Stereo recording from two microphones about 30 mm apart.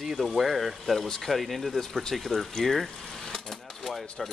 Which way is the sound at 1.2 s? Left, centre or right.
Centre.